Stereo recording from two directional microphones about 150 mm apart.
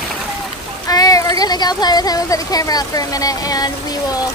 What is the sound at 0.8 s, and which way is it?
Speech, 25° left (ahead or behind).